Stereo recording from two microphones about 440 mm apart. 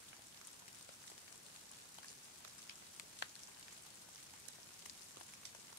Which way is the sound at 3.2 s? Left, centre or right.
Left.